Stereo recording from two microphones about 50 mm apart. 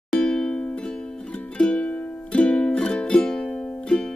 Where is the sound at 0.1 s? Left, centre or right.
Centre.